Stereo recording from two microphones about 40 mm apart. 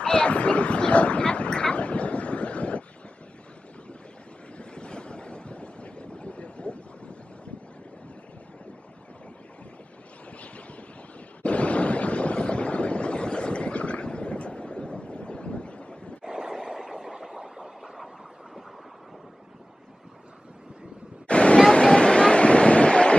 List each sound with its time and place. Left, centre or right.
0.0 s dog: left
4.6 s wind noise: left
11.4 s a sound: left
16.3 s a sound: centre
16.6 s vehicle: centre
21.3 s hubbub: left
21.7 s waves: left